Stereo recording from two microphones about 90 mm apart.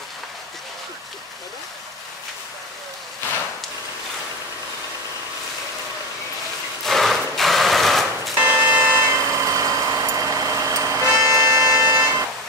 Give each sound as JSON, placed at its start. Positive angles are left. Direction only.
{"t": 6.8, "sound": "sewing machine", "side_deg": 5}
{"t": 8.5, "sound": "vehicle", "side_deg": -25}
{"t": 11.1, "sound": "a sound", "side_deg": -30}